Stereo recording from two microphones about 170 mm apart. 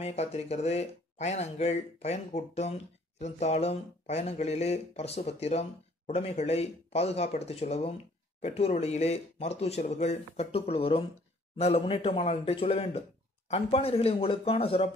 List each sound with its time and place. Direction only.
0.0 s speech: 40° left (ahead or behind)